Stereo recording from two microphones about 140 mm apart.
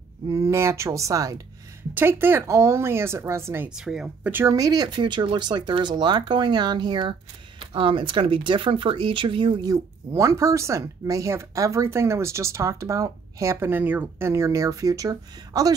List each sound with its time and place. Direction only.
0.3 s speech: 20° right (ahead or behind)
3.7 s speech: 5° right (ahead or behind)
4.3 s speech: 20° right (ahead or behind)